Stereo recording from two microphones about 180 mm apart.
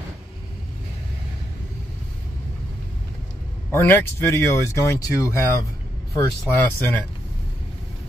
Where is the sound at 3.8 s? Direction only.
10° left (ahead or behind).